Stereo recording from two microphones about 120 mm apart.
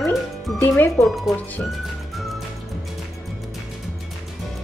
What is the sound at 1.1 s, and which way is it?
Speech, centre (ahead or behind).